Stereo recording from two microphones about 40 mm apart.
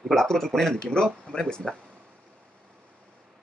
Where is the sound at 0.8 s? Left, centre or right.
Left.